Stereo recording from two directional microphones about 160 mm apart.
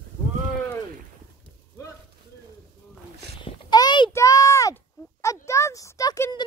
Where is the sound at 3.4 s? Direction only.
25° left (ahead or behind).